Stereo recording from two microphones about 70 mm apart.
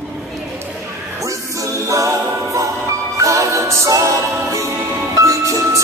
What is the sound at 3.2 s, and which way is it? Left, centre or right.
Music, right.